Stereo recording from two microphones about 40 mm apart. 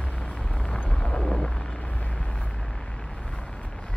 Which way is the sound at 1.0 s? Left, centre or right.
Centre.